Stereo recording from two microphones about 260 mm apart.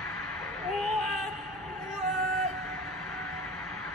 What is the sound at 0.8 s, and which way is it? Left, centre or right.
Music, left.